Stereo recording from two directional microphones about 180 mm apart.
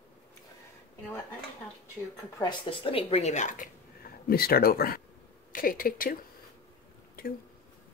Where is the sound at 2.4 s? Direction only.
25° left (ahead or behind); by 6.2 s 50° left (ahead or behind).